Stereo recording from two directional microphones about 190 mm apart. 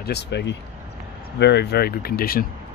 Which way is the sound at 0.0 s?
60° left (ahead or behind).